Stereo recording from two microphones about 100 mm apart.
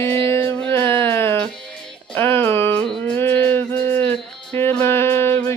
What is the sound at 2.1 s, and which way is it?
Music, 20° left (ahead or behind).